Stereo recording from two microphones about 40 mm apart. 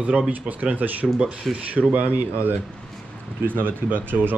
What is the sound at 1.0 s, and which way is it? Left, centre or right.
Speech, right.